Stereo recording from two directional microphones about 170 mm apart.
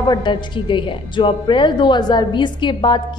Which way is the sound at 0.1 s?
30° left (ahead or behind).